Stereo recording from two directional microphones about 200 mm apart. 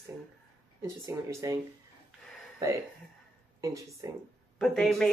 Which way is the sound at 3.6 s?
15° right (ahead or behind).